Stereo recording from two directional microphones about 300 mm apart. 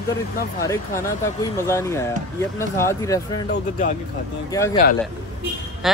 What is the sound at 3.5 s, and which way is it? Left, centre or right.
Speech, left.